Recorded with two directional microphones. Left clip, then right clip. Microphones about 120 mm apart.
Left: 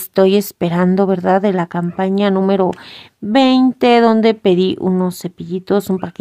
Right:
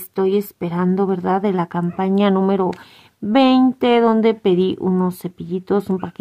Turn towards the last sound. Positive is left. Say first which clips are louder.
# left 3 dB
turn(degrees=20)  # may be behind; listen again after turning